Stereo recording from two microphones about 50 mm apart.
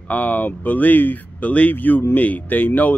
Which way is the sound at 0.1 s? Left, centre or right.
Left.